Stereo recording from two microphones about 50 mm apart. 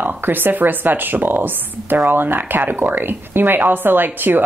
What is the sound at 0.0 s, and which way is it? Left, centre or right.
A woman's voice, right.